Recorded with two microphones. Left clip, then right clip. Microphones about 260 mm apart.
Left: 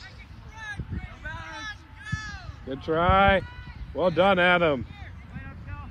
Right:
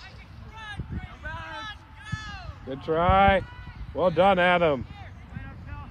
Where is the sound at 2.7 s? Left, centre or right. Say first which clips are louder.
Even; right.